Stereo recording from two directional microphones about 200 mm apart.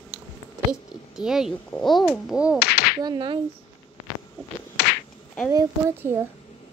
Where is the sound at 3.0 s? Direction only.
25° right (ahead or behind).